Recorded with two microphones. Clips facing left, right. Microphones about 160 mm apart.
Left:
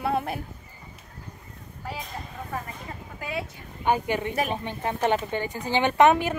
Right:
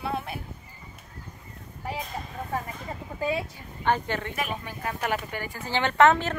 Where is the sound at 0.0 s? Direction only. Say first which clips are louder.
Left 5 dB; 50° left (ahead or behind).